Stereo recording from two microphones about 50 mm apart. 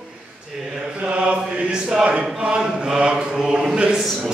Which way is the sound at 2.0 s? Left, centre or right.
Right.